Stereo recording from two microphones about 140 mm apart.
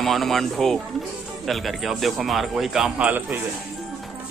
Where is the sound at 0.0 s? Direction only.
Centre (ahead or behind).